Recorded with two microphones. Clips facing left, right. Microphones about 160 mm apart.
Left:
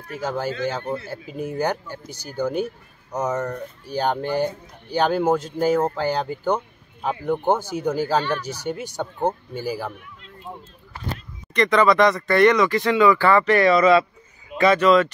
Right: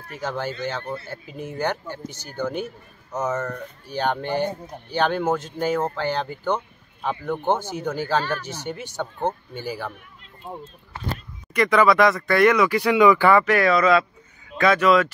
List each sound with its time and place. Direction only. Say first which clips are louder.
0.2 s speech: left 3 dB; 10° left (ahead or behind)
8.3 s speech: left 3 dB; 35° left (ahead or behind)
8.6 s speech: left 2 dB; 10° left (ahead or behind)
11.5 s speech: even; 5° right (ahead or behind)